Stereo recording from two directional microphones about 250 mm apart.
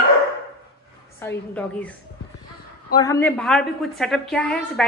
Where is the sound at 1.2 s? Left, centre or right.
Centre.